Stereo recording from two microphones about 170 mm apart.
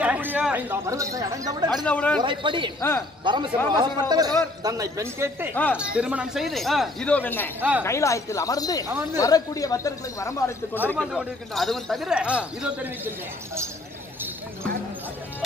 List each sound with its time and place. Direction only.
0.0 s speech: 10° right (ahead or behind)
1.7 s speech: 5° left (ahead or behind)
2.2 s a man's voice: 30° right (ahead or behind)
5.5 s speech: 10° left (ahead or behind)
5.8 s speech: 5° right (ahead or behind); by 8.8 s 20° left (ahead or behind)
8.8 s speech: 15° right (ahead or behind)
9.2 s speech: 20° left (ahead or behind)
10.9 s speech: centre (ahead or behind)